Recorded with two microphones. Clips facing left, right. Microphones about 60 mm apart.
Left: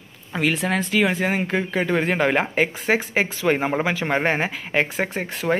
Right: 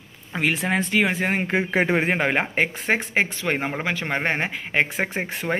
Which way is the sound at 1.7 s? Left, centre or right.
Right.